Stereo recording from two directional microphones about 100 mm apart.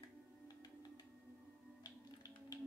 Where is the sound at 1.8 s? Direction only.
40° left (ahead or behind).